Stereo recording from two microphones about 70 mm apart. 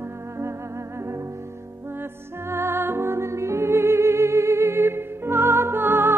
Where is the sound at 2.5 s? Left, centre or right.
Right.